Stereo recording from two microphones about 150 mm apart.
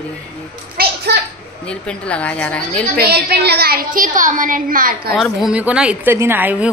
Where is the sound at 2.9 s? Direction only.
90° right.